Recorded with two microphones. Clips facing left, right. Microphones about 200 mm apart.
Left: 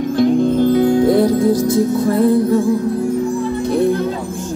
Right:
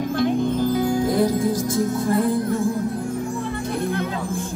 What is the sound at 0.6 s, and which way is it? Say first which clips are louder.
Music: left 8 dB; 65° left (ahead or behind).